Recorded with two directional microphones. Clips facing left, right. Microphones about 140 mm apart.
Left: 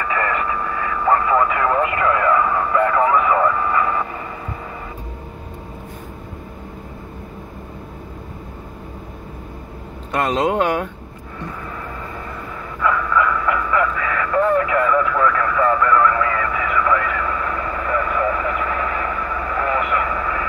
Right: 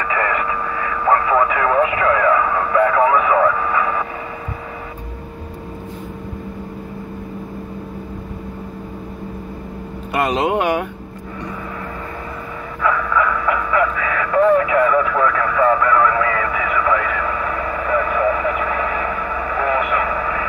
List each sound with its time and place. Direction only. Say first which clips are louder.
0.1 s radio: right 1 dB; 5° right (ahead or behind)
10.1 s vehicle: even; 10° right (ahead or behind)
12.8 s radio: even; 5° right (ahead or behind)